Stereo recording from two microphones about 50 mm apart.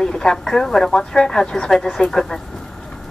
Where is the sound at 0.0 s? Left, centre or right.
Centre.